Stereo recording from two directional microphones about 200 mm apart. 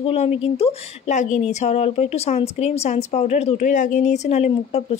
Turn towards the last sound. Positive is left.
turn(degrees=35)  # may be behind; listen again after turning